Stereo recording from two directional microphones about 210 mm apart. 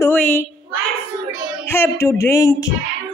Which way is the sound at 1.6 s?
10° left (ahead or behind).